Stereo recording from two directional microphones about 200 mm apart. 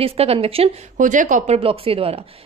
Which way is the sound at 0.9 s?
40° right (ahead or behind).